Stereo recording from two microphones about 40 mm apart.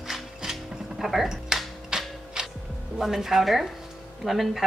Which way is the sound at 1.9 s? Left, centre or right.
Right.